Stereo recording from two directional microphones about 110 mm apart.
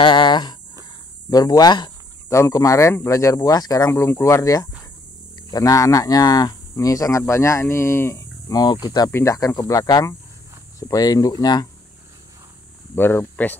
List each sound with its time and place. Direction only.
0.0 s speech: 45° left (ahead or behind)
2.2 s speech: 25° left (ahead or behind)
12.9 s speech: 20° left (ahead or behind)